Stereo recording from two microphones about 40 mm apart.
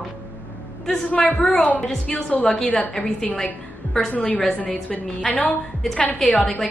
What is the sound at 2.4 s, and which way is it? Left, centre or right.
Speech, centre.